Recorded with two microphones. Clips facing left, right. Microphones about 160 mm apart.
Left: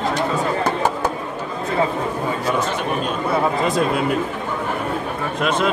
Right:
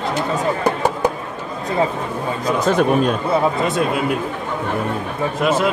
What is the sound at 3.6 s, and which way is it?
Speech, 5° right (ahead or behind).